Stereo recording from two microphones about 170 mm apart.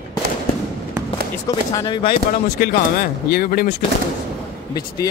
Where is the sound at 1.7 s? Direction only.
25° left (ahead or behind).